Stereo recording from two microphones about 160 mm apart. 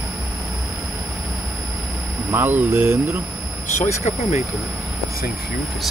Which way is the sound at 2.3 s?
15° right (ahead or behind).